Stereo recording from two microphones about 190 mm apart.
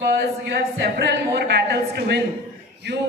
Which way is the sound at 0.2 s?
60° right (ahead or behind).